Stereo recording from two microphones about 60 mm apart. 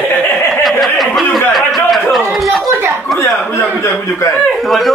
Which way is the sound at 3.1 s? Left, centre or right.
Centre.